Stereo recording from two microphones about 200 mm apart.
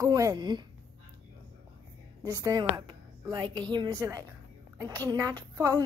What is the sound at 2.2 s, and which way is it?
A woman's voice, 15° right (ahead or behind).